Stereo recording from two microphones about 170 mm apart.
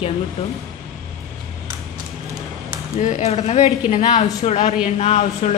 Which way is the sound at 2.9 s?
45° left (ahead or behind).